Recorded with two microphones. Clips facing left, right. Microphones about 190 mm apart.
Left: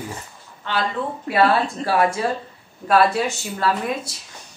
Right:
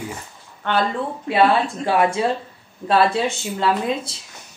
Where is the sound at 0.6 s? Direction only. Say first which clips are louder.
Right 4 dB; 60° right (ahead or behind).